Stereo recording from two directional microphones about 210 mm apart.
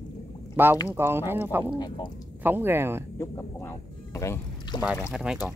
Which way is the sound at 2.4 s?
10° right (ahead or behind).